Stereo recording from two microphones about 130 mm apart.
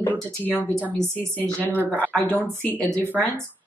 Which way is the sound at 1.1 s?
10° left (ahead or behind).